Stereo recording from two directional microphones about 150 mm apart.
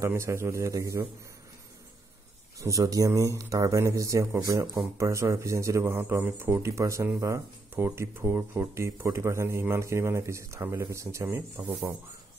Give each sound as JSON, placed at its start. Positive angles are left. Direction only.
{"t": 0.0, "sound": "speech", "side_deg": -20}
{"t": 2.6, "sound": "speech", "side_deg": -20}